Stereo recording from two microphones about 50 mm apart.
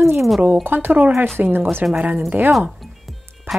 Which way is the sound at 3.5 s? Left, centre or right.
Right.